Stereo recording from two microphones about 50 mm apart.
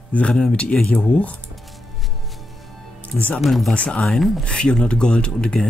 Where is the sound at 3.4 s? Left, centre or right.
Centre.